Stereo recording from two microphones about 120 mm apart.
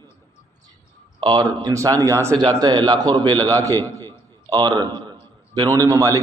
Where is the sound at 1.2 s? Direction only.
35° right (ahead or behind).